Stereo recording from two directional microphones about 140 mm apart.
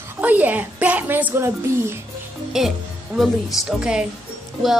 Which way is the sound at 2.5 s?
5° right (ahead or behind).